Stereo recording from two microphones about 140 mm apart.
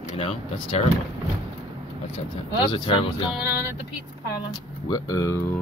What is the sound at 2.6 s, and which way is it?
Speech, 35° left (ahead or behind).